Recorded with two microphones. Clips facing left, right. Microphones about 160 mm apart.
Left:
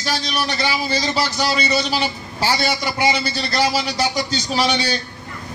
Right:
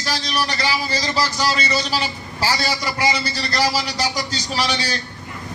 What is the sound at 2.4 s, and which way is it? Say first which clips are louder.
A man's voice: left 2 dB; 25° left (ahead or behind).